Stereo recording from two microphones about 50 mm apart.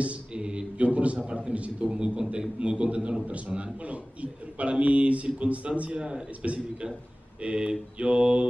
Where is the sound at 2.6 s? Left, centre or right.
Right.